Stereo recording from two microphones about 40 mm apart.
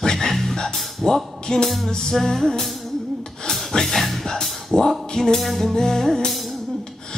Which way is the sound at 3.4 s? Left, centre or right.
Centre.